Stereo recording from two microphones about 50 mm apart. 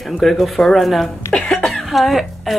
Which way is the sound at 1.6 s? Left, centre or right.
Centre.